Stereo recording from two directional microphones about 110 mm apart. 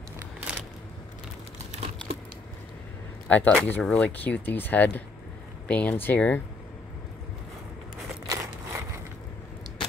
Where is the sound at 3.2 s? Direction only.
15° left (ahead or behind).